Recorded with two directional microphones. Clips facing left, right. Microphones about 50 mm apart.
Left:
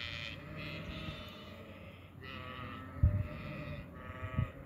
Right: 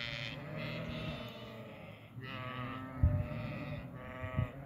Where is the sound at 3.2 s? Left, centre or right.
Centre.